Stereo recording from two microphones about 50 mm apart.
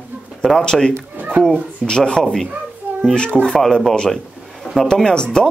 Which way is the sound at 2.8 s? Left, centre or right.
Right.